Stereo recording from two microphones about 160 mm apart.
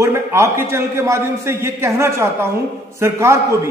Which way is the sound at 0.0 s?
15° right (ahead or behind).